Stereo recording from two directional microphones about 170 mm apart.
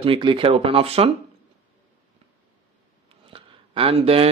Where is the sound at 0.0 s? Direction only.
30° right (ahead or behind).